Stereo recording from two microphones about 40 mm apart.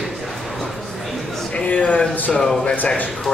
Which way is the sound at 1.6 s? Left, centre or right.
Left.